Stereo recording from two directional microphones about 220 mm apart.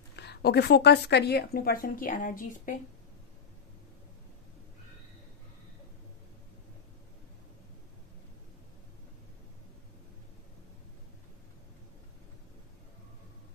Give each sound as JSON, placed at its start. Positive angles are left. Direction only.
{"t": 0.1, "sound": "a woman's voice", "side_deg": 50}